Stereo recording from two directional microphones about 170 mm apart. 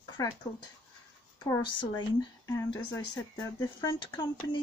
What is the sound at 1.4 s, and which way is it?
Speech, 25° left (ahead or behind).